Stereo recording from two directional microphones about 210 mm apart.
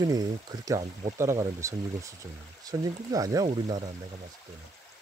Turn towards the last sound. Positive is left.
turn(degrees=-20)  # may be behind; listen again after turning